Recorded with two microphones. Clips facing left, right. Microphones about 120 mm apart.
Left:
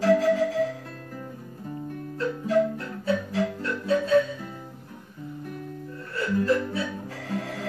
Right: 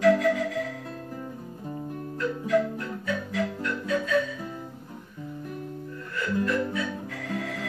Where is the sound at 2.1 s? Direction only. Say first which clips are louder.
Left 1 dB; 30° left (ahead or behind).